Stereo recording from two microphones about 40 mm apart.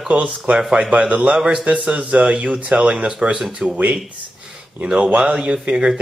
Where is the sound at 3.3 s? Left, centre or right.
Centre.